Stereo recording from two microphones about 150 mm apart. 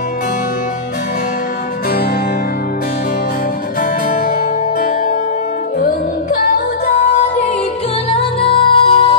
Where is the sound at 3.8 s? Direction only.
75° left (ahead or behind).